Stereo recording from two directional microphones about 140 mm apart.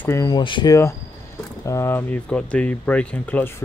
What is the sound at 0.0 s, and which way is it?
Speech, 20° left (ahead or behind).